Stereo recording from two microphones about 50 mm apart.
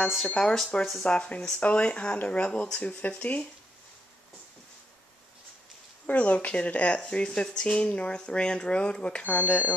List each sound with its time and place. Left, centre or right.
0.4 s speech: centre
6.0 s speech: left
9.2 s speech: left